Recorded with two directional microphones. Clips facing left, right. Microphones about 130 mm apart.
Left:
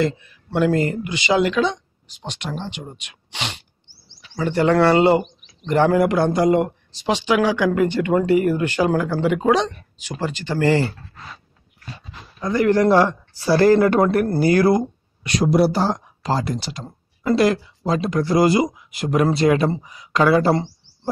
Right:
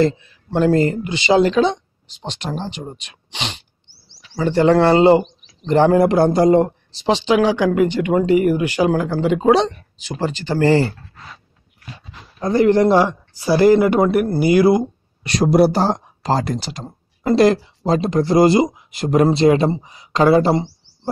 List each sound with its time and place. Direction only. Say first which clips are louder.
0.0 s speech: right 4 dB; 30° right (ahead or behind)
12.4 s speech: right 3 dB; 30° right (ahead or behind)
12.9 s speech: right 1 dB; 15° right (ahead or behind)
15.2 s speech: right 3 dB; 40° right (ahead or behind)
20.5 s a sound: right 2 dB; 10° right (ahead or behind)